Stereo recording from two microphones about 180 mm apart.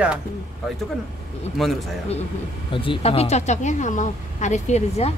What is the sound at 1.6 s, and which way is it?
Speech, centre (ahead or behind).